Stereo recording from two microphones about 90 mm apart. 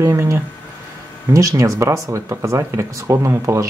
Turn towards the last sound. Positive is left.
turn(degrees=-35)  # may be behind; listen again after turning